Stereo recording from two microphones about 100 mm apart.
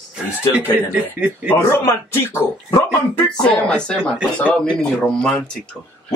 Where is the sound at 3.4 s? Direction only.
10° left (ahead or behind).